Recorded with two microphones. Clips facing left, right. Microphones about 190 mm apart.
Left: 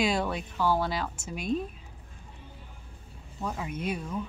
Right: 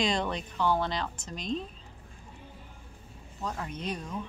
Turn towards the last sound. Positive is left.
turn(degrees=5)  # may be behind; listen again after turning